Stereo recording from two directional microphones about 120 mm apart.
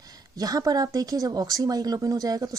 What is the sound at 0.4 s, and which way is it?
Speech, 30° right (ahead or behind).